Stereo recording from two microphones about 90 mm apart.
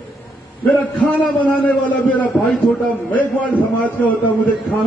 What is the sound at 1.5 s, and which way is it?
Speech, 15° left (ahead or behind).